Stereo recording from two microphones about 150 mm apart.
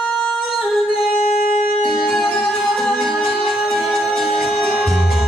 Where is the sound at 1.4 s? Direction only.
70° left (ahead or behind).